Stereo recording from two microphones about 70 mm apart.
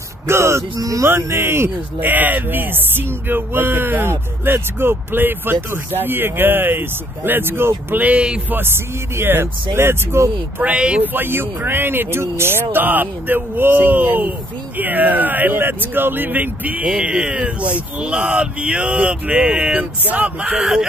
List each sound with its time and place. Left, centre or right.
0.3 s speech: right
0.7 s speech: right
1.0 s speech: right
8.0 s speech: centre
8.5 s speech: right
10.6 s speech: centre
11.0 s speech: right
20.5 s speech: centre